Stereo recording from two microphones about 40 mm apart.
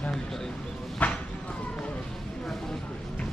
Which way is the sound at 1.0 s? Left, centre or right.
Left.